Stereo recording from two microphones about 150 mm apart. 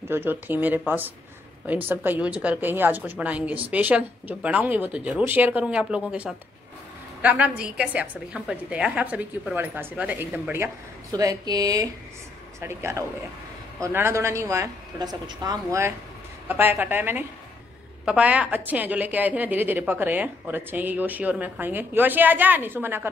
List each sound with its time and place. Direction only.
0.1 s a woman's voice: 15° right (ahead or behind)
11.1 s a woman's voice: 25° right (ahead or behind)